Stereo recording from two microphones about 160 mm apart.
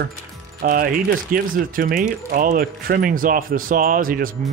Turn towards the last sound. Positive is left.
turn(degrees=-60)  # may be behind; listen again after turning